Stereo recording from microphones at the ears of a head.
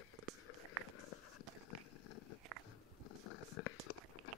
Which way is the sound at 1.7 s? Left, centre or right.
Left.